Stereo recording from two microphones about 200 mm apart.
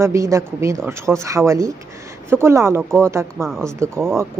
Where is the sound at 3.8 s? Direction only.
15° right (ahead or behind).